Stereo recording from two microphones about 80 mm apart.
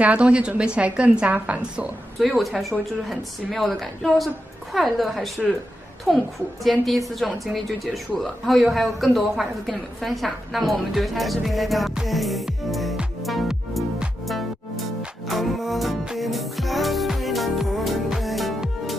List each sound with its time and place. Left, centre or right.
0.0 s a woman's voice: centre
2.1 s speech: centre
13.2 s music: centre
15.2 s music: centre